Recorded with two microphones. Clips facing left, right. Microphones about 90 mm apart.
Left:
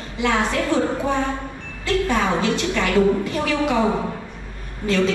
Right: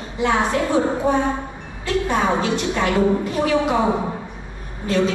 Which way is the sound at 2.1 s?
10° right (ahead or behind).